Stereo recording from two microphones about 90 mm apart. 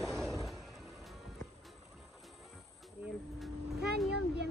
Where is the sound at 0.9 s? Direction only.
Centre (ahead or behind).